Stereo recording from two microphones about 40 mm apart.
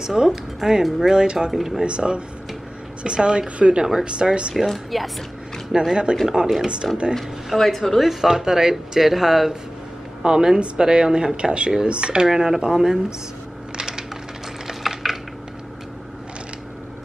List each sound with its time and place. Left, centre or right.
0.0 s speech: centre
1.5 s a woman's voice: centre
1.8 s speech: right
4.6 s a woman's voice: centre
5.7 s speech: centre
7.4 s a woman's voice: centre
10.2 s speech: centre
12.3 s speech: centre
13.7 s coin: centre
14.7 s typing: centre